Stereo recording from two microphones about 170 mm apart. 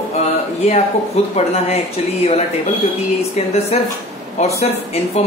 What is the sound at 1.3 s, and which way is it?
Speech, 40° left (ahead or behind).